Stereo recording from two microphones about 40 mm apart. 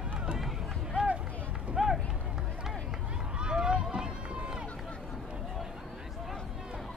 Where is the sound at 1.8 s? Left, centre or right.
Centre.